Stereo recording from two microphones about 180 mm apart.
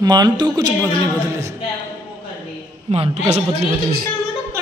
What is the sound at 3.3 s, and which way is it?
Speech, 35° right (ahead or behind).